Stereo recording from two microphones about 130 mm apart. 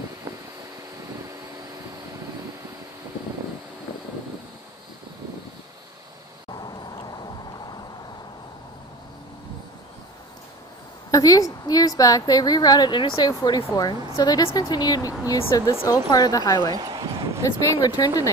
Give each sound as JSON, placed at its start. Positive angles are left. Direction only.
{"t": 6.5, "sound": "vehicle", "side_deg": 35}
{"t": 11.1, "sound": "a woman's voice", "side_deg": 25}
{"t": 16.7, "sound": "a sound", "side_deg": -35}
{"t": 17.7, "sound": "speech", "side_deg": 30}